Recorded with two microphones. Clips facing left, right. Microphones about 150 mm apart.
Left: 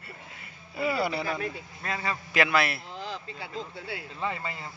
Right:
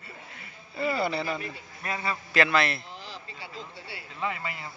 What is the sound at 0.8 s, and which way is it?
Speech, 5° left (ahead or behind).